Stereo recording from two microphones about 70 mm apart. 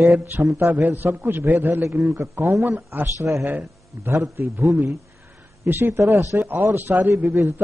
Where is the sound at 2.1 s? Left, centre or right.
Right.